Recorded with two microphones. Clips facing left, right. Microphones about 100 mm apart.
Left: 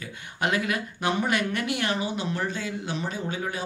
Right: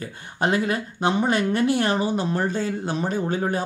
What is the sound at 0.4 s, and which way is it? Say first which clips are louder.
Speech: right 4 dB; 35° right (ahead or behind).